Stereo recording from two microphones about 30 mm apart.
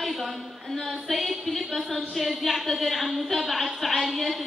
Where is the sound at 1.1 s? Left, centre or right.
Centre.